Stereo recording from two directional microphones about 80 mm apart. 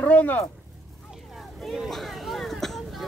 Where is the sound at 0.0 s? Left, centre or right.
Left.